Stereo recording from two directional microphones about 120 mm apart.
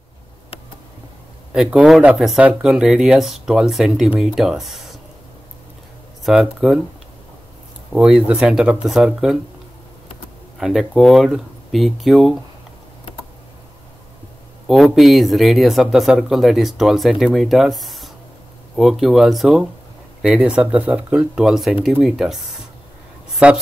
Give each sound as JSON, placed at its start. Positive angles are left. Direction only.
{"t": 1.5, "sound": "speech", "side_deg": -10}
{"t": 6.3, "sound": "speech", "side_deg": 0}
{"t": 7.9, "sound": "speech", "side_deg": -10}
{"t": 10.6, "sound": "speech", "side_deg": -5}
{"t": 14.7, "sound": "speech", "side_deg": 0}